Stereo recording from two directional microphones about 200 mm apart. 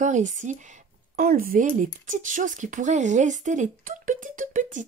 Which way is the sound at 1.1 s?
45° right (ahead or behind).